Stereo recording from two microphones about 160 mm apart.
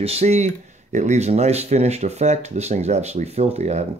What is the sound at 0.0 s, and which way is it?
Speech, 40° right (ahead or behind).